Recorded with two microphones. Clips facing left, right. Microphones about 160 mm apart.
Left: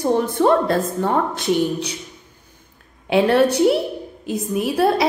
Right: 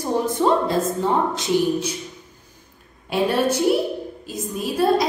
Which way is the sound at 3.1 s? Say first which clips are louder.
Left 5 dB; 65° left (ahead or behind).